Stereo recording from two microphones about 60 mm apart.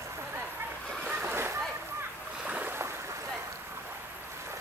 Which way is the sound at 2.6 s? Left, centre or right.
Right.